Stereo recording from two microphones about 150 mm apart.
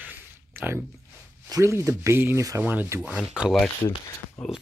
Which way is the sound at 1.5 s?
20° right (ahead or behind).